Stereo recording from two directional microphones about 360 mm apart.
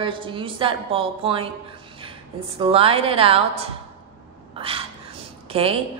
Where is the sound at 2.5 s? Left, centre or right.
Centre.